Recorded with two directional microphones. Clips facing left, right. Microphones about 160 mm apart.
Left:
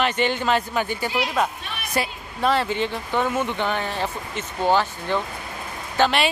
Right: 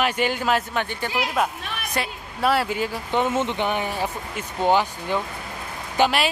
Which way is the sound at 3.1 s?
20° right (ahead or behind).